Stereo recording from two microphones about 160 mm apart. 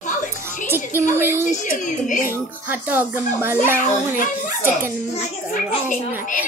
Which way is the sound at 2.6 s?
10° right (ahead or behind).